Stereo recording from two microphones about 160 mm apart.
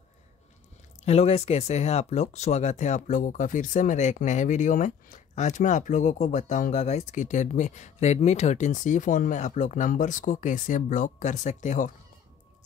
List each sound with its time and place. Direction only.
1.0 s speech: 40° left (ahead or behind)